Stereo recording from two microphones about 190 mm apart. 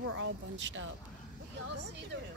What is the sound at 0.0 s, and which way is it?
Speech, 85° right.